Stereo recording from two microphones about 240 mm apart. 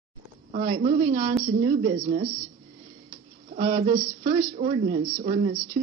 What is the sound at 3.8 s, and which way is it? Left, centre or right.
Speech, right.